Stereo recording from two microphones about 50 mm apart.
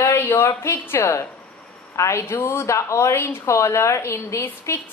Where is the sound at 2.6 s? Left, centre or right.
Left.